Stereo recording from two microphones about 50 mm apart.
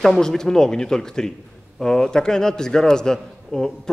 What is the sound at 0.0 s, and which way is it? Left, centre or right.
A man's voice, centre.